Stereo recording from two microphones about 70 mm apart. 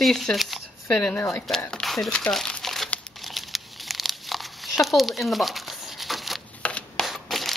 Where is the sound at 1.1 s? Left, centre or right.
Left.